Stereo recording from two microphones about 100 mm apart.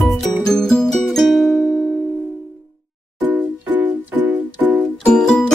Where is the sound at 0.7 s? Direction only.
5° left (ahead or behind).